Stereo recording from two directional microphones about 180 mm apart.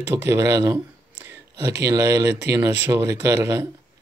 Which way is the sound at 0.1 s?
15° right (ahead or behind).